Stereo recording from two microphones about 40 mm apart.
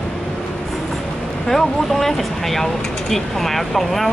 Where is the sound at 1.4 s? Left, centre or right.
Centre.